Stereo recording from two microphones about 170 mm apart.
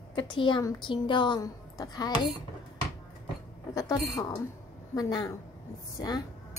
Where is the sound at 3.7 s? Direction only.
20° left (ahead or behind).